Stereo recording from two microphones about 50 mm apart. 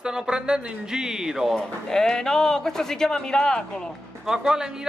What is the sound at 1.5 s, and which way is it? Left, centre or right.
A man's voice, centre.